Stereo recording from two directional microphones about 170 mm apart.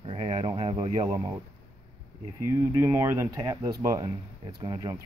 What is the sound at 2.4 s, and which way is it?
Speech, 15° right (ahead or behind).